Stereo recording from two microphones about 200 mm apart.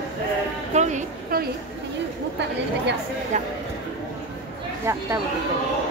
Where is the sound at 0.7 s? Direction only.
35° right (ahead or behind).